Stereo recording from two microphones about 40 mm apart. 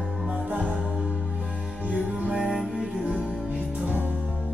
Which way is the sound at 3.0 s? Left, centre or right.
Right.